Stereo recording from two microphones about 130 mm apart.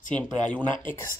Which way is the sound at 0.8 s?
20° left (ahead or behind).